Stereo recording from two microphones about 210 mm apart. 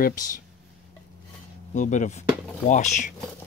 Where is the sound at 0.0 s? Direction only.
40° left (ahead or behind).